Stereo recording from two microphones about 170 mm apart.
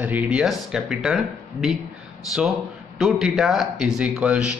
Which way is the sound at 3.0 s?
Centre (ahead or behind).